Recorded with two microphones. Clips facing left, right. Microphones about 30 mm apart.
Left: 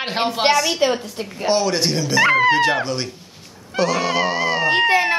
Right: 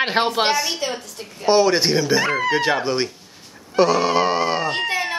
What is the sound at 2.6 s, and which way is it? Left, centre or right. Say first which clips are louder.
Speech: left 1 dB; centre.